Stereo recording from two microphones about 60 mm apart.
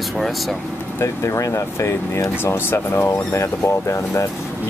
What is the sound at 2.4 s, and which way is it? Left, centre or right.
Speech, left.